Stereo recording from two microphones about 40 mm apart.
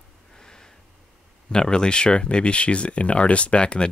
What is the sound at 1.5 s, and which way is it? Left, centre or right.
Speech, centre.